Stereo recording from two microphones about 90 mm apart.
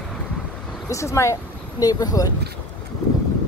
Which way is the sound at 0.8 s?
35° left (ahead or behind).